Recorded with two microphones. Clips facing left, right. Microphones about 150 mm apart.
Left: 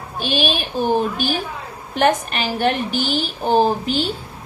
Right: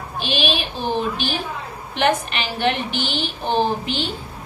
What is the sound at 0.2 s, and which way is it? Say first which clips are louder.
A woman's voice: left 2 dB; 45° left (ahead or behind).